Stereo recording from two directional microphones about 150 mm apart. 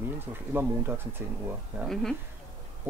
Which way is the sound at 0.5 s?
15° right (ahead or behind).